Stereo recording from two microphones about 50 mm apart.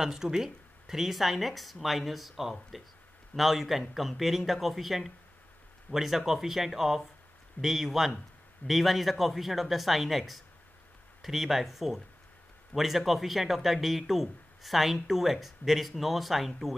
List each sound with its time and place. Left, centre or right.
0.0 s speech: centre